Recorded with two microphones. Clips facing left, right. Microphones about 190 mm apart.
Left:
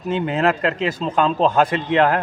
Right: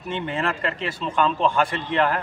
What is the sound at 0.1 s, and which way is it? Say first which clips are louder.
Speech: left 7 dB; 40° left (ahead or behind).